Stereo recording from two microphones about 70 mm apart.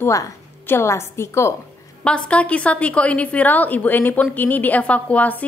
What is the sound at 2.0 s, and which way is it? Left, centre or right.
A woman's voice, centre.